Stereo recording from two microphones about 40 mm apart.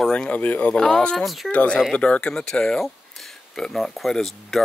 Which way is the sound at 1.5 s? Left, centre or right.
Left.